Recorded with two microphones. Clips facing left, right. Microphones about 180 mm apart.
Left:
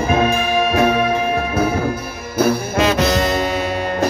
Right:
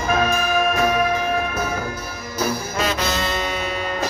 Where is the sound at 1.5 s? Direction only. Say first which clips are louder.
Left 7 dB; 30° left (ahead or behind).